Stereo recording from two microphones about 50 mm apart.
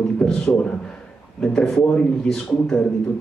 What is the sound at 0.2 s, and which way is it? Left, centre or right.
A man's voice, centre.